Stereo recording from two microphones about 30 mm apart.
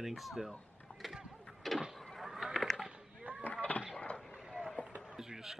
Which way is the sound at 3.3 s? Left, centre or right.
Left.